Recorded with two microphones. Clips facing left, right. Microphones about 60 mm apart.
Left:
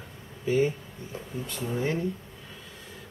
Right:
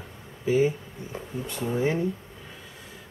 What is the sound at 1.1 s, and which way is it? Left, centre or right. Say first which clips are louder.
Speech: right 2 dB; right.